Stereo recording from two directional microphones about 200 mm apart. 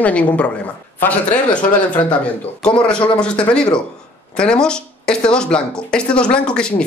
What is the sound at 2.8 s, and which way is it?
Speech, 5° left (ahead or behind).